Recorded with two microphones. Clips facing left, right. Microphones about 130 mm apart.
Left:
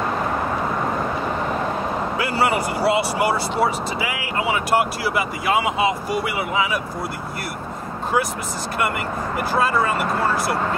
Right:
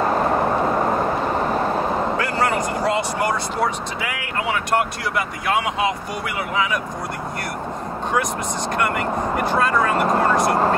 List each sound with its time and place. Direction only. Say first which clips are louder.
2.1 s speech: even; 10° left (ahead or behind)
8.7 s speech: right 2 dB; 5° left (ahead or behind)